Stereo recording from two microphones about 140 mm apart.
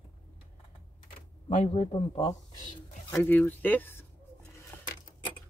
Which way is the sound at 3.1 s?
15° left (ahead or behind).